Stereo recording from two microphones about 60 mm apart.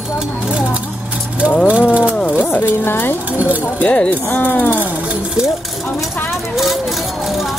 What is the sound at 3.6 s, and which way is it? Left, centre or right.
Speech, left.